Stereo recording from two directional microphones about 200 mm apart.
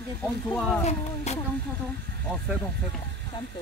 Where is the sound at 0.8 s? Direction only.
35° left (ahead or behind).